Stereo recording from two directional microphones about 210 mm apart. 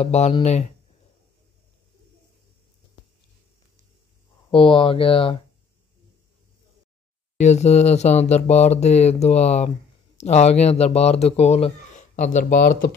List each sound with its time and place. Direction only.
0.0 s speech: 30° left (ahead or behind)
4.5 s speech: 25° left (ahead or behind)
7.3 s speech: 35° left (ahead or behind)